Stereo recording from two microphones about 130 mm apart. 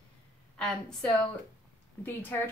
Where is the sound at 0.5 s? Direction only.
5° left (ahead or behind).